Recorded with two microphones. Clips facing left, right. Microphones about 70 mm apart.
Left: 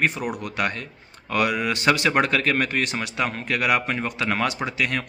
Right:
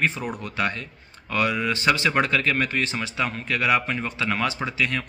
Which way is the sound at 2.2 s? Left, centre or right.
Left.